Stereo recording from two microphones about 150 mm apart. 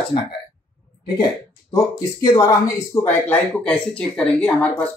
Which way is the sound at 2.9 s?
10° left (ahead or behind).